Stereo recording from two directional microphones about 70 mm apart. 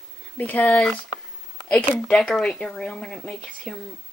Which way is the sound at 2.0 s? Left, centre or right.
Centre.